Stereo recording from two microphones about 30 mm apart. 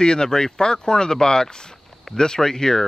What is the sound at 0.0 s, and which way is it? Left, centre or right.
Speech, left.